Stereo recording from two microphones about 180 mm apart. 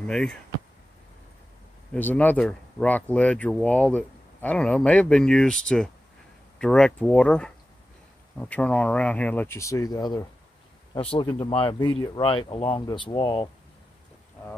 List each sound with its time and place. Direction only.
0.0 s speech: 5° left (ahead or behind)
2.0 s speech: 10° left (ahead or behind)
11.0 s speech: 30° left (ahead or behind)